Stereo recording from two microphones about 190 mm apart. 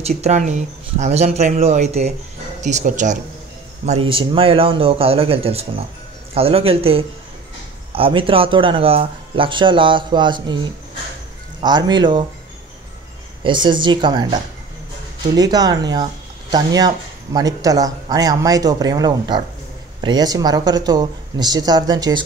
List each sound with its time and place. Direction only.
0.0 s speech: 35° right (ahead or behind)
13.4 s speech: 25° right (ahead or behind)